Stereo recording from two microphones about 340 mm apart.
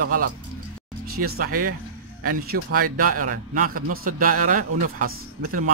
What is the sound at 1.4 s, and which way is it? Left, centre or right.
Speech, right.